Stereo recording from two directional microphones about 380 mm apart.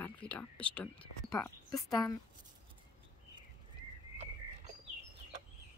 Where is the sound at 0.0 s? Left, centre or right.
Centre.